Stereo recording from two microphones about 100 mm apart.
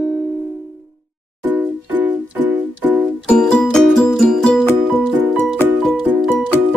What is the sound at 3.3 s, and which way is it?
Music, 10° left (ahead or behind).